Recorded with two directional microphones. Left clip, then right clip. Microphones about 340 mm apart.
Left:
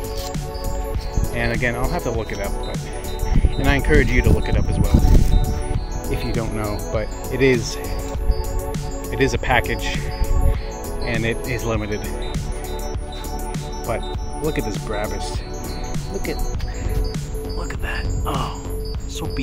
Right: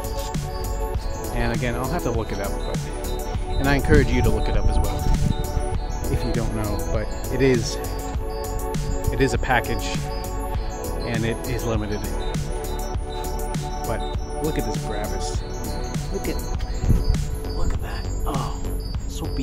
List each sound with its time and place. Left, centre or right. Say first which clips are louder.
1.3 s speech: left 4 dB; centre
6.0 s speech: left 2 dB; centre
8.7 s speech: left 3 dB; centre
11.1 s speech: left 5 dB; centre
13.5 s music: left 2 dB; centre
18.2 s music: left 3 dB; centre